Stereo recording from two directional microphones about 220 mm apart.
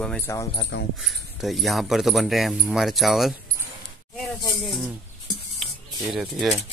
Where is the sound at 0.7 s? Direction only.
55° left (ahead or behind).